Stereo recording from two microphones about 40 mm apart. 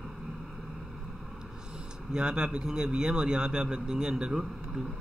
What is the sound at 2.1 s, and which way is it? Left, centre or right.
A man's voice, right.